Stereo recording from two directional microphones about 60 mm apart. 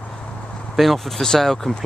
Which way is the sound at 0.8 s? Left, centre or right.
Centre.